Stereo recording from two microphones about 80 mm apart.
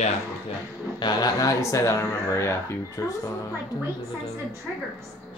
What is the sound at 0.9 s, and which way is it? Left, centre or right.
Speech, left.